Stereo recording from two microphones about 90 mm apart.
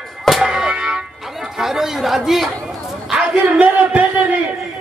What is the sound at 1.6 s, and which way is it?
A man's voice, 5° right (ahead or behind).